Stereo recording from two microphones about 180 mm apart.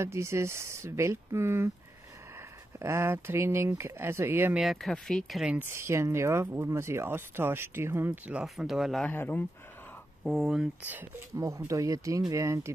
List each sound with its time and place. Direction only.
0.0 s speech: 15° right (ahead or behind)
2.8 s speech: 15° right (ahead or behind)
4.6 s speech: centre (ahead or behind)
10.2 s speech: centre (ahead or behind)